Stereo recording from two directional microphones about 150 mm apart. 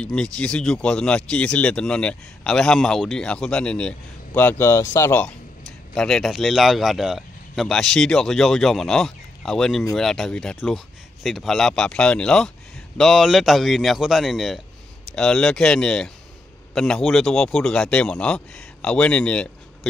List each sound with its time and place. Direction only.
0.0 s speech: 5° left (ahead or behind)
5.9 s speech: 5° left (ahead or behind)